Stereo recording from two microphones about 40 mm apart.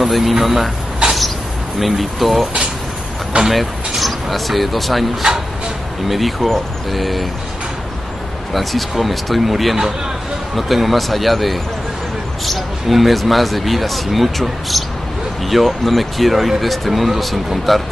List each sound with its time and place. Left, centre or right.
0.0 s speech: centre
1.0 s a sound: right
1.8 s speech: centre
3.4 s speech: centre
6.0 s speech: centre
8.5 s speech: centre